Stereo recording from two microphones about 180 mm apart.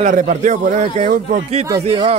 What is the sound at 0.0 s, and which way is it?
A man's voice, 45° right (ahead or behind).